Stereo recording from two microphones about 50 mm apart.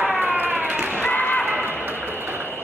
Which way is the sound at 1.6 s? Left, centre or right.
Right.